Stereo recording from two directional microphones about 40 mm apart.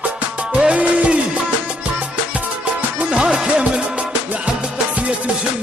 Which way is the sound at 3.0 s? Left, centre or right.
Right.